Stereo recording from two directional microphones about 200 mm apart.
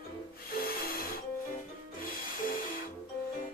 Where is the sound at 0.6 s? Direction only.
50° left (ahead or behind).